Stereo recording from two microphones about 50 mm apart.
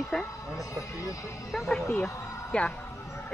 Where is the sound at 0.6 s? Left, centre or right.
Left.